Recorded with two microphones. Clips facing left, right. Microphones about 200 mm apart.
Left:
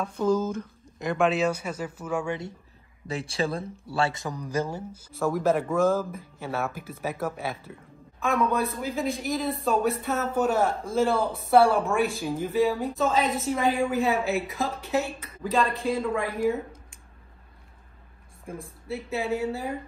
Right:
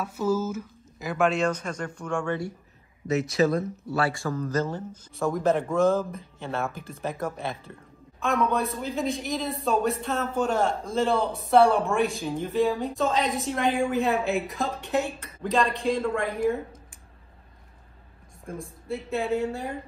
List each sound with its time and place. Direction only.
0.0 s a man's voice: 5° right (ahead or behind)
3.1 s a man's voice: 30° left (ahead or behind); by 16.3 s centre (ahead or behind)
18.5 s a man's voice: 5° left (ahead or behind)